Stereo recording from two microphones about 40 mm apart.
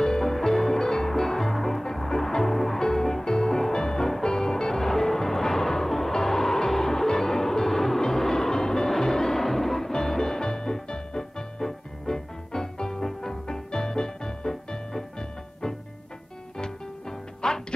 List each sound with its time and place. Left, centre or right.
0.0 s music: centre
17.4 s music: centre